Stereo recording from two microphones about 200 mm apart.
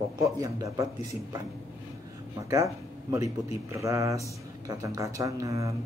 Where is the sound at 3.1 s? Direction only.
15° right (ahead or behind).